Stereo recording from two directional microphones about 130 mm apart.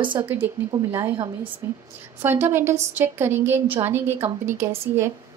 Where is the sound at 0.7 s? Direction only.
25° right (ahead or behind).